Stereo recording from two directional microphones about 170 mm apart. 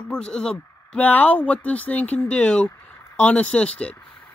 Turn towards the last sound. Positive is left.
turn(degrees=5)  # may be behind; listen again after turning